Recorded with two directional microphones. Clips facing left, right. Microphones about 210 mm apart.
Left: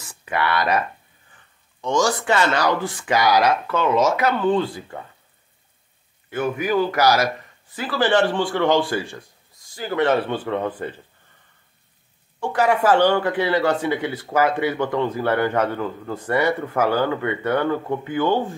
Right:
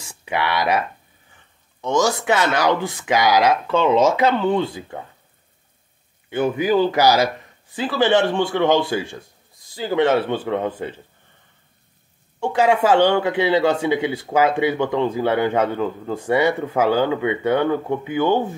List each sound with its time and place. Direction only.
0.2 s speech: 15° right (ahead or behind)
2.2 s speech: 15° right (ahead or behind)
6.3 s speech: 30° right (ahead or behind)
10.3 s speech: 10° right (ahead or behind)
12.4 s a woman's voice: 25° right (ahead or behind)
13.7 s speech: 10° right (ahead or behind)